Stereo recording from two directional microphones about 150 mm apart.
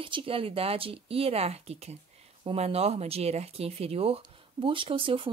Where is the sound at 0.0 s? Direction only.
35° right (ahead or behind).